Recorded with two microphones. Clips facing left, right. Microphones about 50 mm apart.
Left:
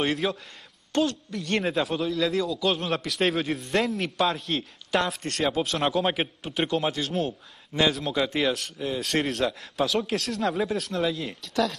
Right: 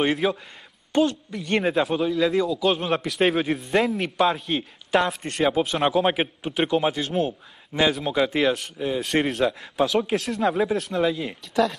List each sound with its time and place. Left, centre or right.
0.0 s a man's voice: centre